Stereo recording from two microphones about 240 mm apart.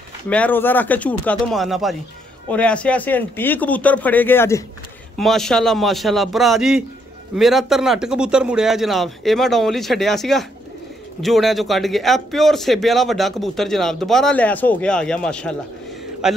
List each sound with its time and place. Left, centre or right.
0.3 s a man's voice: centre